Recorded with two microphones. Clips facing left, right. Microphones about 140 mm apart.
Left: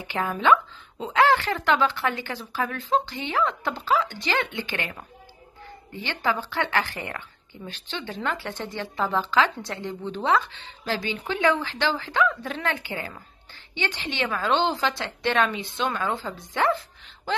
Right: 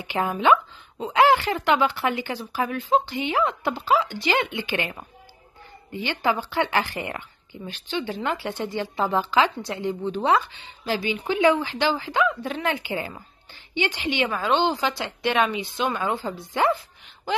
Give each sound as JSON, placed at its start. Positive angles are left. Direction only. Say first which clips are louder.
{"t": 0.0, "sound": "a sound", "louder": "right 2 dB", "side_deg": -15}
{"t": 1.1, "sound": "a woman's voice", "louder": "right 2 dB", "side_deg": -20}
{"t": 14.3, "sound": "a woman's voice", "louder": "left 1 dB", "side_deg": -5}
{"t": 15.3, "sound": "a woman's voice", "louder": "right 2 dB", "side_deg": -20}
{"t": 16.6, "sound": "music", "louder": "right 1 dB", "side_deg": -5}